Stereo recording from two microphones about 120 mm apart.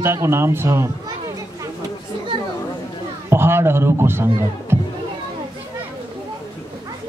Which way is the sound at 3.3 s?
20° right (ahead or behind).